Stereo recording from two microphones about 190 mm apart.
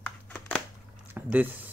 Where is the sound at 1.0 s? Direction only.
10° right (ahead or behind).